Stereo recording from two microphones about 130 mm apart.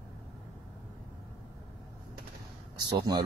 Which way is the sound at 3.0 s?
30° right (ahead or behind).